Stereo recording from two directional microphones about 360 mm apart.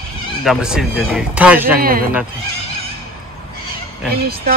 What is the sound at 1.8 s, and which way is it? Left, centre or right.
Speech, right.